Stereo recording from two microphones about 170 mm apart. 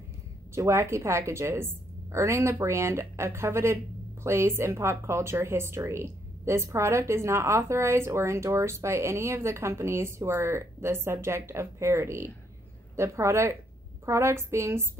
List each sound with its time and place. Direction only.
0.6 s a woman's voice: 15° right (ahead or behind)